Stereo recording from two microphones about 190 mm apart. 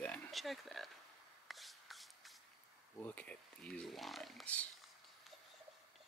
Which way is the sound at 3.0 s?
10° left (ahead or behind).